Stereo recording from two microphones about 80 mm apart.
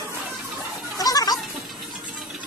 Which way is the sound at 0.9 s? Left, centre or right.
Left.